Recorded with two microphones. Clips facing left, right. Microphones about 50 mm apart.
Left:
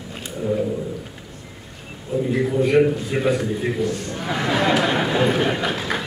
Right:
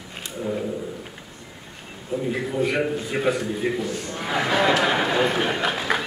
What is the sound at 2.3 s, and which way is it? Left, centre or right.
A man's voice, centre.